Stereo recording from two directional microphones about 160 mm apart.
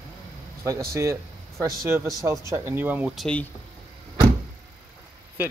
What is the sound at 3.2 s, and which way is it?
Speech, 10° left (ahead or behind).